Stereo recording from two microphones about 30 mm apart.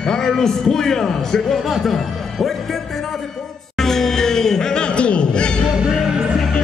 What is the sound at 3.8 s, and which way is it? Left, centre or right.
Music, centre.